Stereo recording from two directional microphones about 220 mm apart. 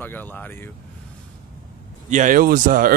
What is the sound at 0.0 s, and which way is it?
Speech, 10° left (ahead or behind).